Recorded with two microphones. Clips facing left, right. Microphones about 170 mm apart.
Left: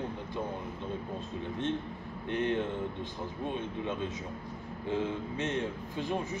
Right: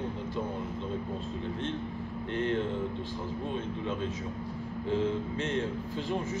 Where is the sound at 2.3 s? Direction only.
20° left (ahead or behind).